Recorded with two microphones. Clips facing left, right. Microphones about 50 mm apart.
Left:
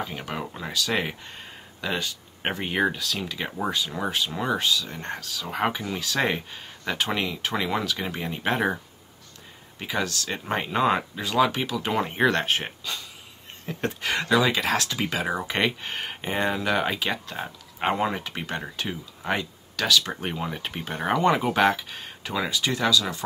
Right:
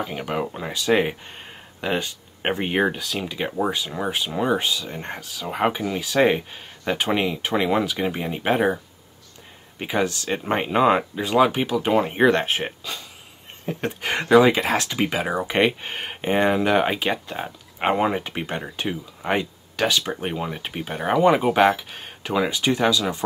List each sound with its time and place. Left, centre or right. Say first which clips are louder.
0.0 s speech: right 5 dB; centre
3.4 s speech: right 4 dB; centre
4.5 s speech: right 1 dB; right
9.8 s speech: right 5 dB; right
11.9 s speech: right 5 dB; centre; by 20.1 s right
20.2 s speech: right 3 dB; centre
21.7 s speech: right 1 dB; right